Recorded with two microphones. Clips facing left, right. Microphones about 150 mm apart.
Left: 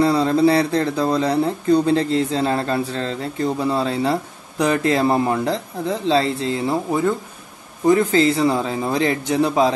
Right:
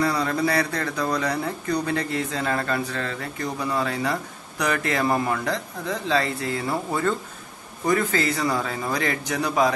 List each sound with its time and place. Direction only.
0.0 s speech: 30° left (ahead or behind)